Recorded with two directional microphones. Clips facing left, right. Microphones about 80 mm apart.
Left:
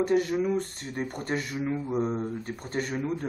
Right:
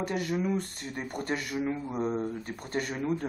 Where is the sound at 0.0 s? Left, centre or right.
Left.